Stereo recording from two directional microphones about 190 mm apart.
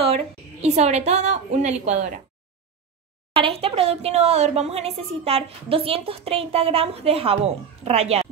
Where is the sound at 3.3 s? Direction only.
30° right (ahead or behind).